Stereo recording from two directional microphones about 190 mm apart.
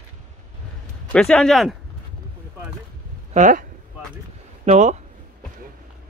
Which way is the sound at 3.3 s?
40° right (ahead or behind).